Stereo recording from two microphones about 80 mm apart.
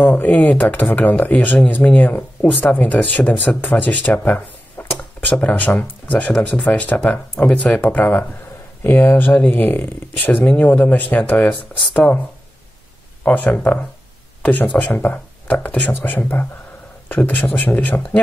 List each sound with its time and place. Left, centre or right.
0.0 s speech: left
13.2 s speech: left